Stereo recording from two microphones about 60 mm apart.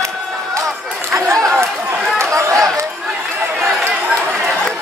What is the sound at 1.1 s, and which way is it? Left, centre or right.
Chatter, right.